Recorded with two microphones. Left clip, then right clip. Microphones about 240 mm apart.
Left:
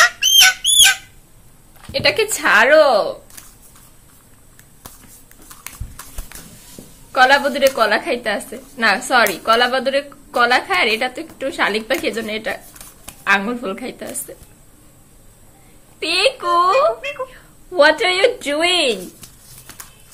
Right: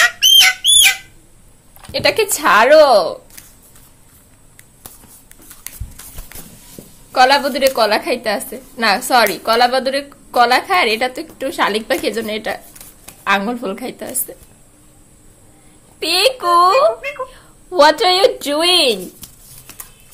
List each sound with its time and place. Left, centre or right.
0.0 s bird: centre
1.9 s speech: centre
7.1 s a woman's voice: centre
16.0 s a woman's voice: centre
17.7 s a woman's voice: centre